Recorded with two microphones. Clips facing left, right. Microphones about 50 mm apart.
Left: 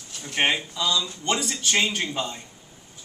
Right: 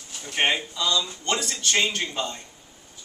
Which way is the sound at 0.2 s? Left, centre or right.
Centre.